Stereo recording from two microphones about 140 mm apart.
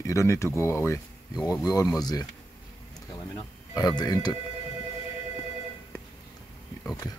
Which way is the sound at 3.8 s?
30° left (ahead or behind).